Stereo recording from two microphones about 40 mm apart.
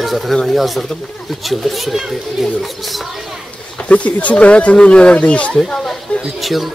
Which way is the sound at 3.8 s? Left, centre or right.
Left.